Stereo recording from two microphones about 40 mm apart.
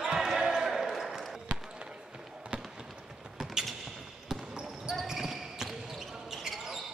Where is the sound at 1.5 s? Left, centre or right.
Right.